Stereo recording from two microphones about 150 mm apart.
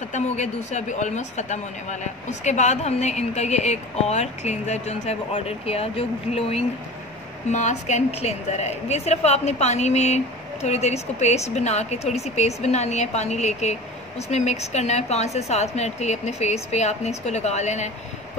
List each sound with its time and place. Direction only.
0.1 s speech: 50° left (ahead or behind)